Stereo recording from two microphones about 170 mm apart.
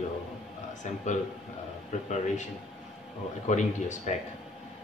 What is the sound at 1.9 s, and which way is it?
Speech, 45° left (ahead or behind).